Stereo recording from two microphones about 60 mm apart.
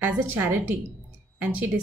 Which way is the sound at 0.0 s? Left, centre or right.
Right.